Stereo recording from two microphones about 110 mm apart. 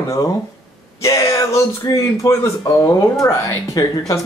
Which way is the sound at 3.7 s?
30° left (ahead or behind).